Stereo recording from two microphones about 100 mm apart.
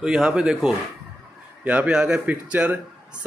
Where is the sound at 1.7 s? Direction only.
15° right (ahead or behind).